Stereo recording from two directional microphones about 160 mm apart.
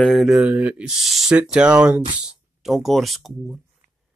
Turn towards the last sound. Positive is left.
turn(degrees=0)  # may be behind; listen again after turning